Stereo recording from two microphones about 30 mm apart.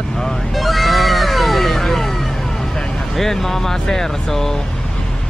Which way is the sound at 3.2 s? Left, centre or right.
Centre.